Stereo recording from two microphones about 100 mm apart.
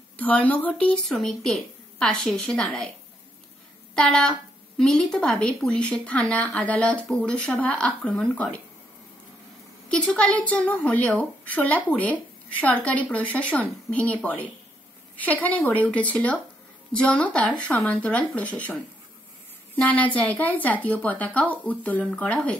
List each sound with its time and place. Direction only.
0.2 s a woman's voice: 15° left (ahead or behind)
3.9 s a woman's voice: 10° left (ahead or behind)
9.8 s a woman's voice: 10° left (ahead or behind)